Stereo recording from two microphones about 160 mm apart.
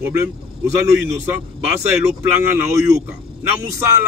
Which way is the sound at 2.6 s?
15° right (ahead or behind).